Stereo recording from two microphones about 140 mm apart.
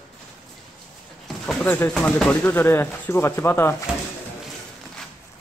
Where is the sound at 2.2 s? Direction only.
10° left (ahead or behind).